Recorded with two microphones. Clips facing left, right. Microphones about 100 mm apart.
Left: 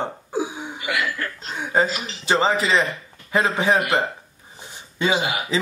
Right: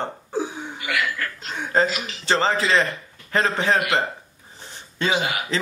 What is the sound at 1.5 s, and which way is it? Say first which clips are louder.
A man's voice: even; 10° left (ahead or behind).